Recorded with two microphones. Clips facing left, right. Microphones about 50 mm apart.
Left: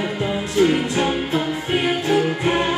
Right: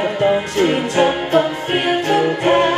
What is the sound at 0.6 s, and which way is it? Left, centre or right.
Music, right.